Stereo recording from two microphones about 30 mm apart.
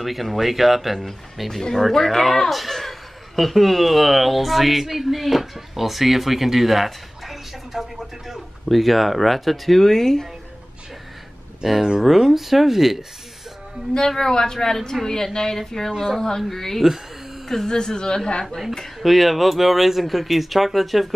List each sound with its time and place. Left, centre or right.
0.0 s speech: centre
9.8 s speech: centre
11.6 s speech: centre
13.9 s a woman's voice: centre
15.9 s speech: centre
16.2 s a woman's voice: centre
18.9 s speech: centre